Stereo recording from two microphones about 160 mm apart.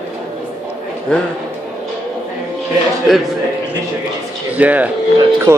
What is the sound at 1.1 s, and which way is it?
Speech, 5° left (ahead or behind).